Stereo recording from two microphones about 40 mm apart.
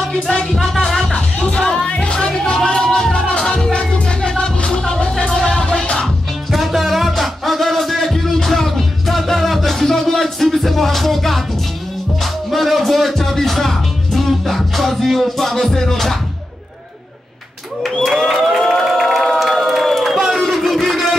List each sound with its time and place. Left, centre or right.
0.3 s music: centre
0.6 s music: centre
0.9 s music: centre
6.5 s music: centre
12.4 s speech: centre
17.8 s a sound: centre
18.3 s a sound: centre
18.9 s crowd: centre
20.3 s battle cry: centre